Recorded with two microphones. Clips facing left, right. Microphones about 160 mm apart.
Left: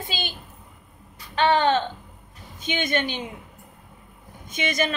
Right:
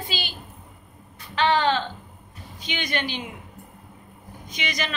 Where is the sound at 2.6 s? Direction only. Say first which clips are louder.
Left 4 dB; 50° left (ahead or behind).